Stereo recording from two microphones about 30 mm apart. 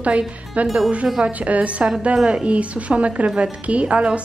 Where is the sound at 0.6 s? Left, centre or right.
Right.